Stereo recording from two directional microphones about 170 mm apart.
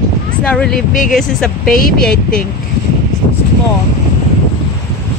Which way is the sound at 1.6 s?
55° left (ahead or behind).